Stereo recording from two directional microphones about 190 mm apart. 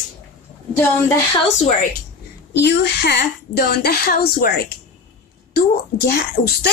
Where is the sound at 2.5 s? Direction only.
65° left (ahead or behind).